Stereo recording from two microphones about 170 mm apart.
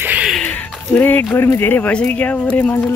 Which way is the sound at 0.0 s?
5° right (ahead or behind).